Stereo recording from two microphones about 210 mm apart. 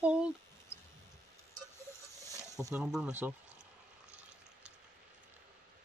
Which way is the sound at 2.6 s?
5° right (ahead or behind).